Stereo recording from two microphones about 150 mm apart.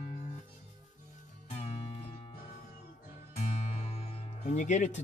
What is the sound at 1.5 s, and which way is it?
Music, 40° left (ahead or behind).